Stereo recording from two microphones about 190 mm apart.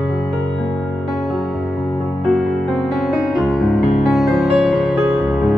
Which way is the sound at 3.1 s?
Centre (ahead or behind).